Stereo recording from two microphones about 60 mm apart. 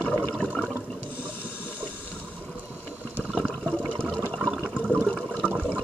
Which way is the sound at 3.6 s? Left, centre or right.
Centre.